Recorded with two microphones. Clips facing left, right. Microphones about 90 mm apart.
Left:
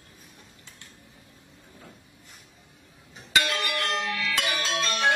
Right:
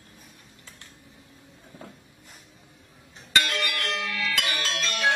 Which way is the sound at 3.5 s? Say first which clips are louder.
Left 1 dB; 20° left (ahead or behind).